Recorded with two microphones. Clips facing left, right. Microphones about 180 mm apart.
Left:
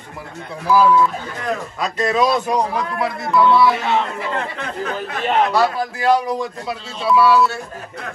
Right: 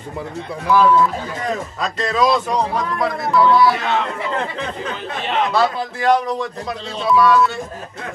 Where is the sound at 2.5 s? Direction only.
5° left (ahead or behind).